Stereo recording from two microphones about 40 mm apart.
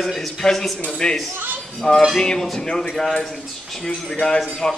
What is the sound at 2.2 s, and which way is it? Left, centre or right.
Speech, centre.